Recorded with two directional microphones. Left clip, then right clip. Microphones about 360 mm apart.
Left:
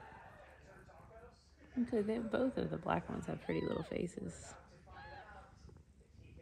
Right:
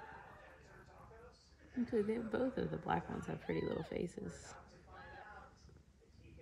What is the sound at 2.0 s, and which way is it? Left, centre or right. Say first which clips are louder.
Speech: left 1 dB; centre.